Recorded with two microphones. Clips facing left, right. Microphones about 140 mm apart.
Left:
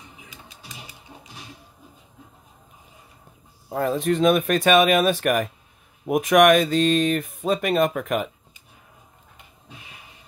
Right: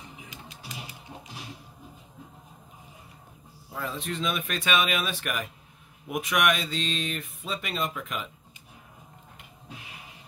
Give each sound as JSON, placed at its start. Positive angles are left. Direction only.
{"t": 3.7, "sound": "speech", "side_deg": 50}